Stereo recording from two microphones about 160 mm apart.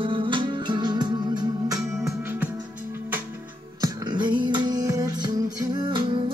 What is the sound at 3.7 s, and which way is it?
Music, 25° right (ahead or behind).